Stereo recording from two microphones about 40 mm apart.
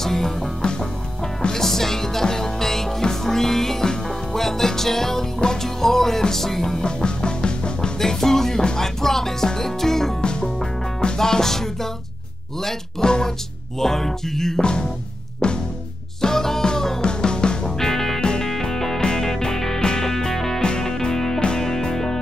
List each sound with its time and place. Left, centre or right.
0.0 s music: centre
0.6 s music: left
1.5 s music: centre
6.8 s music: left
8.0 s music: centre
10.2 s music: left
14.6 s speech: left
15.4 s music: left
16.2 s music: centre
17.7 s music: centre
21.6 s music: centre